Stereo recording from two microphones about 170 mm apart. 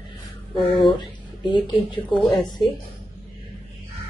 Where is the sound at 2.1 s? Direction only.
5° left (ahead or behind).